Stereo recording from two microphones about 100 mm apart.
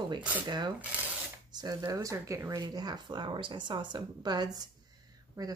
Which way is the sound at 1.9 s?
35° right (ahead or behind).